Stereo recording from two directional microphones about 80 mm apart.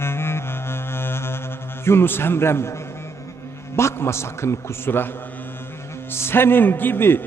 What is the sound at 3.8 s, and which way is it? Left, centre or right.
A man's voice, left.